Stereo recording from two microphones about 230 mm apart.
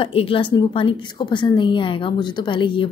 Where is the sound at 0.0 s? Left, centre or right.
Left.